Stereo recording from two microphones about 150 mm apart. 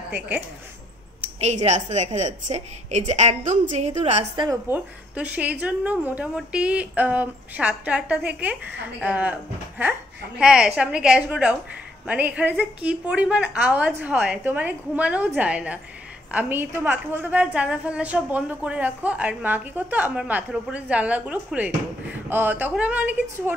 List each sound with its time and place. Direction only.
1.2 s a woman's voice: 50° right (ahead or behind)
4.6 s a woman's voice: 10° right (ahead or behind)